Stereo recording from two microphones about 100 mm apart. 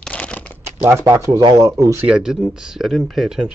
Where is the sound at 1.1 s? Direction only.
30° right (ahead or behind).